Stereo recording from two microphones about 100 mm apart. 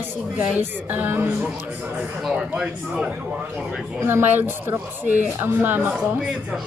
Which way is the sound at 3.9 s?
25° right (ahead or behind).